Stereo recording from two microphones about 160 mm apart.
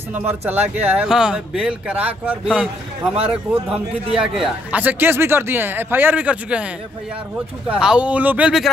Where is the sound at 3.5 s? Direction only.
35° right (ahead or behind).